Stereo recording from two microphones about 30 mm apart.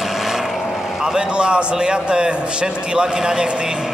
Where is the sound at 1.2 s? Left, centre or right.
Right.